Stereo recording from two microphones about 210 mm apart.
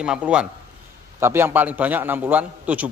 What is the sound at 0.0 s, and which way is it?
A man's voice, 5° right (ahead or behind).